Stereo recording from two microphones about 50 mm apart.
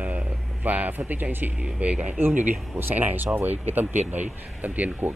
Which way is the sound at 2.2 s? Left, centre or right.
Right.